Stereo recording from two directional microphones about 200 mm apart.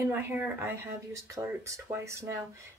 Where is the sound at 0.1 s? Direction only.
10° right (ahead or behind).